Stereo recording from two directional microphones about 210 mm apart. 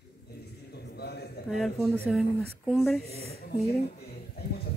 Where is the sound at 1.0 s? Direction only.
50° left (ahead or behind).